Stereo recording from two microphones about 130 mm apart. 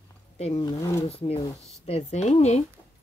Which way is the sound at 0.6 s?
25° left (ahead or behind).